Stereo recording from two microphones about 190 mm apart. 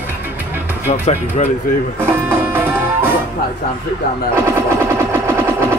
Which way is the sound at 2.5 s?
10° right (ahead or behind).